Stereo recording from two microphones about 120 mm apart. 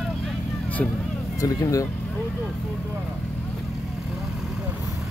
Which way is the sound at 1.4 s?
30° left (ahead or behind).